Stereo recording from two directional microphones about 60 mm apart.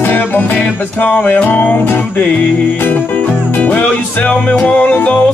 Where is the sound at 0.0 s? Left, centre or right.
Left.